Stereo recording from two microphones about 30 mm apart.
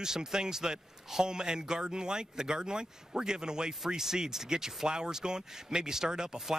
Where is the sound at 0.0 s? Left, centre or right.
Centre.